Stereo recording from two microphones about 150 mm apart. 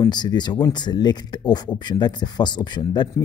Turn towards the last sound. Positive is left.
turn(degrees=30)  # may be behind; listen again after turning